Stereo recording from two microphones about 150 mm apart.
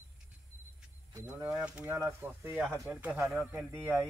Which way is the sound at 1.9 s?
20° right (ahead or behind).